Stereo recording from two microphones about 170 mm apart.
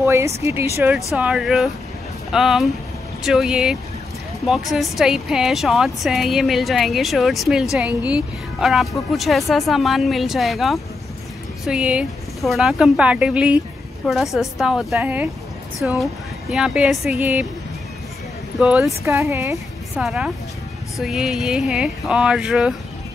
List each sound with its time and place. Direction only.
0.0 s a sound: 15° right (ahead or behind)
0.4 s speech: 15° right (ahead or behind)
18.6 s speech: 5° right (ahead or behind)
19.0 s speech: 15° right (ahead or behind)
20.0 s speech: centre (ahead or behind)